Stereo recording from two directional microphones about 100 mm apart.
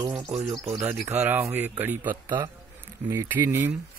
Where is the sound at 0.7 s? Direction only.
30° right (ahead or behind).